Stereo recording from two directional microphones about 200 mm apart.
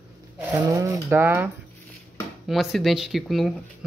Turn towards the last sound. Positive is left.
turn(degrees=0)  # may be behind; listen again after turning